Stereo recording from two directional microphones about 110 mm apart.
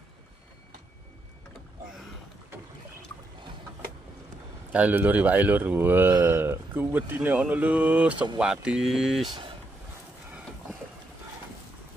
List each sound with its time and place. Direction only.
4.7 s speech: 15° right (ahead or behind)